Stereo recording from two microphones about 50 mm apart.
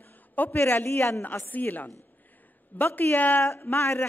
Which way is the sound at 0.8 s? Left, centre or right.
Left.